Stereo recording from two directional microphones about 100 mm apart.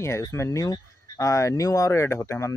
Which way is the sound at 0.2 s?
30° left (ahead or behind).